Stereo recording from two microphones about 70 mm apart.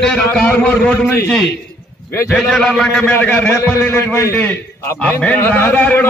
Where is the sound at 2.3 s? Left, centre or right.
Centre.